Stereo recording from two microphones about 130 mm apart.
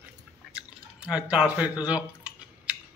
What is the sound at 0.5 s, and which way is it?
Speech, 5° right (ahead or behind).